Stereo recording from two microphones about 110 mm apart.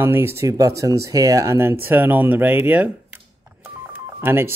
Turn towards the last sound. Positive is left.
turn(degrees=-20)  # may be behind; listen again after turning